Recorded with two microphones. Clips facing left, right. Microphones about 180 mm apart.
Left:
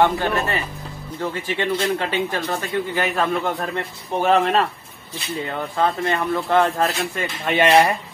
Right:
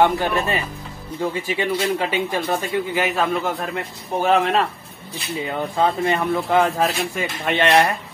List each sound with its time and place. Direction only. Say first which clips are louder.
0.0 s speech: right 1 dB; 15° right (ahead or behind)
3.0 s a man's voice: even; 5° right (ahead or behind)
7.5 s a man's voice: left 2 dB; 5° left (ahead or behind)